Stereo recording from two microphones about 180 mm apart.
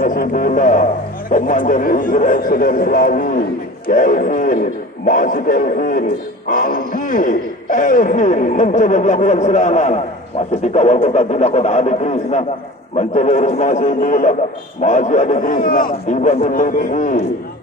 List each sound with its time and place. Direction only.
0.0 s a man's voice: 50° left (ahead or behind)